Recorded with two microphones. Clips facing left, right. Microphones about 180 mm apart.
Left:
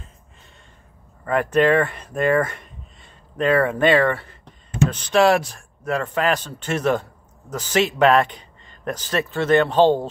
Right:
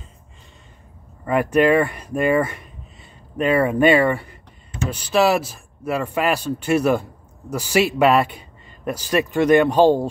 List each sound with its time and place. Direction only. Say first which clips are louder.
1.2 s speech: right 1 dB; 10° right (ahead or behind)